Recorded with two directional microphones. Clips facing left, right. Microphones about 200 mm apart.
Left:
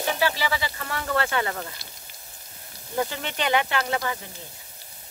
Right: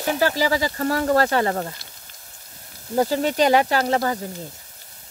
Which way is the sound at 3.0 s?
40° right (ahead or behind).